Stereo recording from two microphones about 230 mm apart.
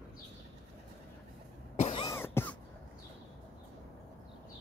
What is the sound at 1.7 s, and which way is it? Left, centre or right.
Cough, left.